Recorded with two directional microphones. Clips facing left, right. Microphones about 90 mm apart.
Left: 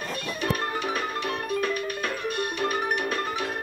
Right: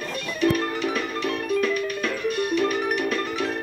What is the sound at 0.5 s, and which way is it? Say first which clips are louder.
Music: right 3 dB; 40° left (ahead or behind).